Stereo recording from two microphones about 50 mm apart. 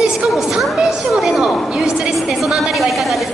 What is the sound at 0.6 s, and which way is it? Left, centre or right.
A woman's voice, centre.